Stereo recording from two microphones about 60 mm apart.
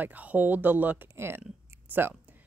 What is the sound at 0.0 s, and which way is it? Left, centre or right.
Speech, right.